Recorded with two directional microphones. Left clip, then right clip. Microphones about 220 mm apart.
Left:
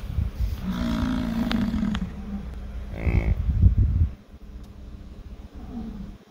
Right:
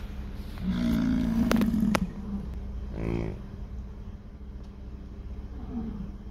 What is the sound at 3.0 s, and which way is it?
Cattle, 25° left (ahead or behind).